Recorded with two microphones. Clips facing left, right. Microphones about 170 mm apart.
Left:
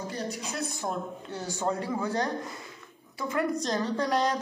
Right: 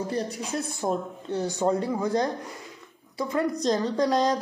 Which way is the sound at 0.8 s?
20° right (ahead or behind).